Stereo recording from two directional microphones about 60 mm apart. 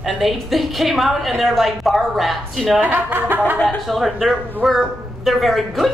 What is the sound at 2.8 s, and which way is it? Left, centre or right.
Speech, right.